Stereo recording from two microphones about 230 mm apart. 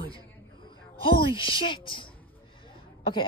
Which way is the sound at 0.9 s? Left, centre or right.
Left.